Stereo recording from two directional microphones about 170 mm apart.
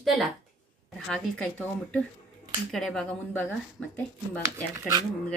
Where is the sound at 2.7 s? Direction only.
Centre (ahead or behind).